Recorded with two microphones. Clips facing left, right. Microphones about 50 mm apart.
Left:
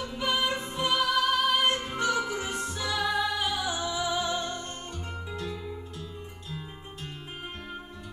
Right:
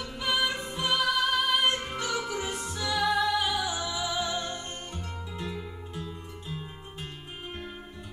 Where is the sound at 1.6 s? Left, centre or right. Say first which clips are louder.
Left 1 dB; right.